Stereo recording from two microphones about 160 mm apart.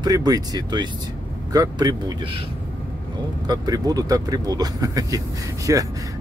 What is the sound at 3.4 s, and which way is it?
Speech, 25° right (ahead or behind).